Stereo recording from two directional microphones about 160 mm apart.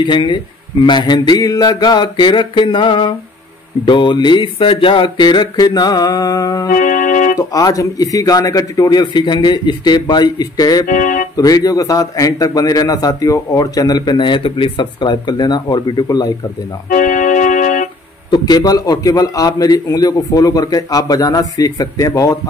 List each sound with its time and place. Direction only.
0.0 s a man's voice: 30° left (ahead or behind)
6.7 s music: 55° left (ahead or behind)
7.3 s a man's voice: 20° left (ahead or behind)
10.9 s music: 55° left (ahead or behind)
11.3 s a man's voice: 25° left (ahead or behind)
16.9 s music: 55° left (ahead or behind)
18.3 s a man's voice: 25° left (ahead or behind)